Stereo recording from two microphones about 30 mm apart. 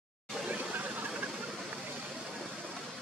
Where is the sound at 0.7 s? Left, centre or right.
Right.